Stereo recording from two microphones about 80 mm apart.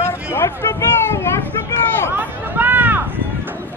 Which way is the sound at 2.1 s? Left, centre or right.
Right.